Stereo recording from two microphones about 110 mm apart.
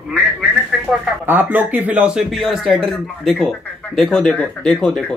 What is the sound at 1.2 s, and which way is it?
Speech, 20° right (ahead or behind).